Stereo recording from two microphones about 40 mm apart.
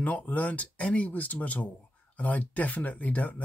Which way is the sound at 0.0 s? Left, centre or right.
Left.